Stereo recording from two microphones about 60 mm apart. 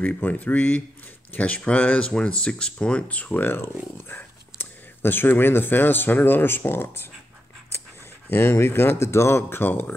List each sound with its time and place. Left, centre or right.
0.0 s speech: left
8.3 s speech: left